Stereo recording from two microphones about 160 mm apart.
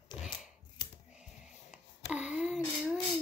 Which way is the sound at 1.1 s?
5° right (ahead or behind).